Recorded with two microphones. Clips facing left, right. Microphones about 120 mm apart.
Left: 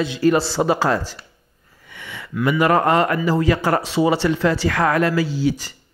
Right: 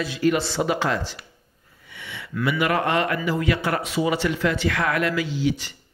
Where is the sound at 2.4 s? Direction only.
40° left (ahead or behind).